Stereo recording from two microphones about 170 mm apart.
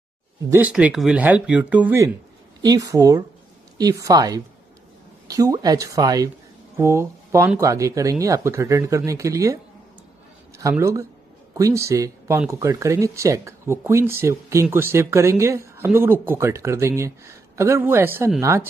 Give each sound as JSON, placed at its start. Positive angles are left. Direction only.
{"t": 0.5, "sound": "speech", "side_deg": -10}
{"t": 2.6, "sound": "speech", "side_deg": -20}
{"t": 10.6, "sound": "speech", "side_deg": -15}